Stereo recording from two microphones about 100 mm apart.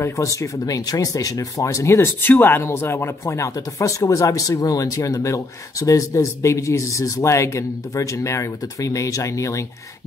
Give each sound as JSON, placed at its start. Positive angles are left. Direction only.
{"t": 0.0, "sound": "speech", "side_deg": 30}